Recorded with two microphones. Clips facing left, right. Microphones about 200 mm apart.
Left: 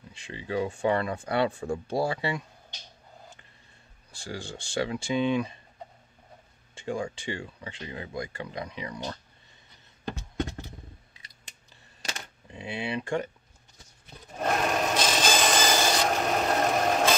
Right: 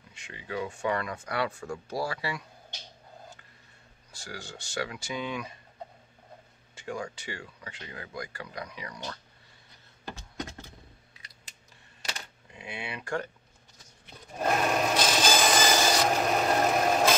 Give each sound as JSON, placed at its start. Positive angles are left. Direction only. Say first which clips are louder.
{"t": 0.1, "sound": "speech", "louder": "left 5 dB", "side_deg": 30}
{"t": 4.1, "sound": "speech", "louder": "left 5 dB", "side_deg": 30}
{"t": 6.7, "sound": "speech", "louder": "left 4 dB", "side_deg": 25}
{"t": 12.5, "sound": "speech", "louder": "left 7 dB", "side_deg": 30}
{"t": 14.4, "sound": "rub", "louder": "even", "side_deg": 0}